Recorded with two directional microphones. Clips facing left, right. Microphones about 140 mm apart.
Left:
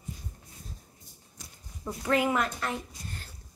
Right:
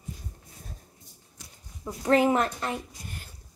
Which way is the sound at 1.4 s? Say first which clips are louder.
Left 1 dB; 40° left (ahead or behind).